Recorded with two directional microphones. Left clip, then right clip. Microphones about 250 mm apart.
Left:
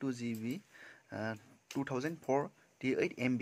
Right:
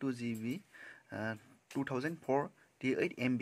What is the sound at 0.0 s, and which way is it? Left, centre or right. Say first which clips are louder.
Speech: even; centre.